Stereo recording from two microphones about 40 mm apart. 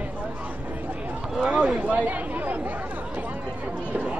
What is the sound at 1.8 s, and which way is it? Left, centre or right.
Speech, right.